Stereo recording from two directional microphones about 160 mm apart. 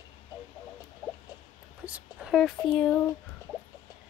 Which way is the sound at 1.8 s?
5° right (ahead or behind).